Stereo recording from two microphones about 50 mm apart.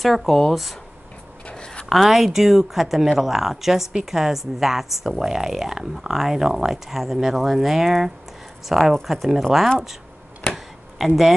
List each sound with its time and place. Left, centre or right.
0.0 s speech: centre
1.4 s a sound: centre
1.9 s a woman's voice: centre
11.0 s speech: centre